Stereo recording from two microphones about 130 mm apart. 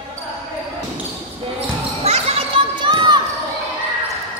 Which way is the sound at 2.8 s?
35° right (ahead or behind).